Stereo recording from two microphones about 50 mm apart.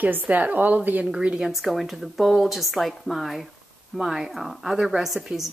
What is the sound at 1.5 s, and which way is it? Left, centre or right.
Speech, centre.